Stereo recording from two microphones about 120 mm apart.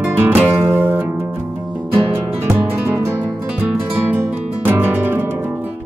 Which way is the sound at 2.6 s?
15° right (ahead or behind).